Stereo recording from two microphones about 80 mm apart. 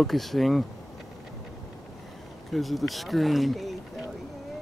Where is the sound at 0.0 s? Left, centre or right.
Centre.